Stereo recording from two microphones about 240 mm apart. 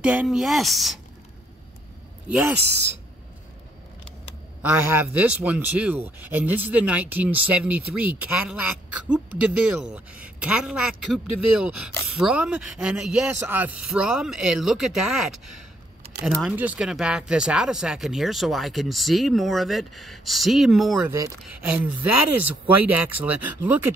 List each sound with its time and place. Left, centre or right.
0.0 s speech: centre
2.2 s speech: centre
2.6 s speech: right
4.6 s speech: centre